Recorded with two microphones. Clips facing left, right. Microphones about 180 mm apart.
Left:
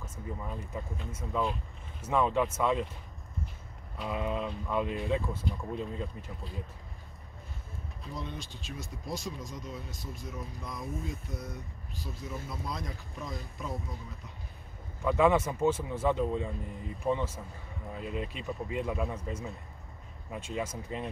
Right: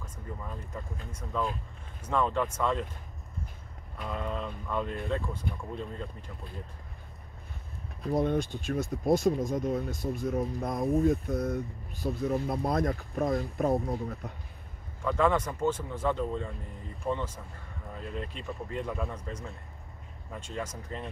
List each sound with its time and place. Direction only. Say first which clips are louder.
0.0 s speech: left 2 dB; 10° left (ahead or behind)
4.0 s speech: left 2 dB; 5° left (ahead or behind)
8.0 s speech: right 14 dB; 55° right (ahead or behind)
15.0 s speech: left 1 dB; 5° left (ahead or behind)